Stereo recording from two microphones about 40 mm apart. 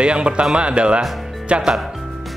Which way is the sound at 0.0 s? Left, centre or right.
Right.